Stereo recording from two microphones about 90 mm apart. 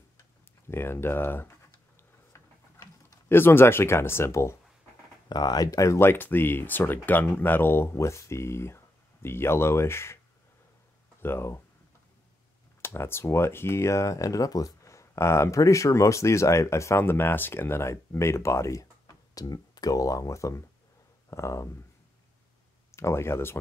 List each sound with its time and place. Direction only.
0.2 s tick-tock: 25° left (ahead or behind)
2.3 s a sound: 30° left (ahead or behind)
3.3 s speech: 25° left (ahead or behind)
5.3 s speech: 45° left (ahead or behind); by 10.1 s 30° left (ahead or behind)
11.1 s speech: 25° left (ahead or behind)
12.8 s speech: 30° left (ahead or behind)
22.8 s speech: 30° left (ahead or behind)